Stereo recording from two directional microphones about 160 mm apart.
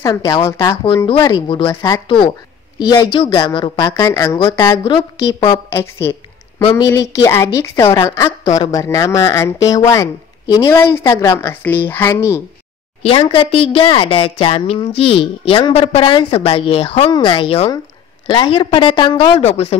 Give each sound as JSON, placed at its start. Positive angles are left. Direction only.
{"t": 0.0, "sound": "a woman's voice", "side_deg": 25}
{"t": 5.7, "sound": "speech", "side_deg": 15}
{"t": 13.0, "sound": "a woman's voice", "side_deg": 35}